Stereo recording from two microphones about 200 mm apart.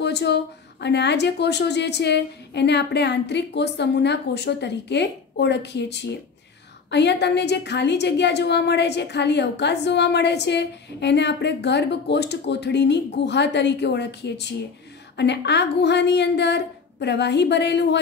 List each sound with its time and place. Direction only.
0.0 s a woman's voice: 60° left (ahead or behind)